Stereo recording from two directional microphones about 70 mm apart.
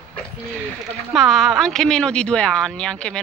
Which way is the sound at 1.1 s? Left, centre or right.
Centre.